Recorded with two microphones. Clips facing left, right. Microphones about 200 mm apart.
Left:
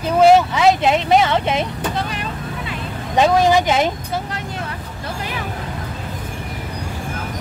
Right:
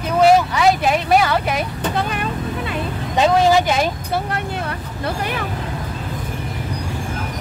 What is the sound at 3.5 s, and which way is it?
Speech, 20° left (ahead or behind).